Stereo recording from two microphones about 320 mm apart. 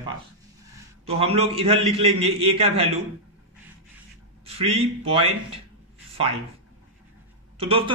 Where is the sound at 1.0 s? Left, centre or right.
Centre.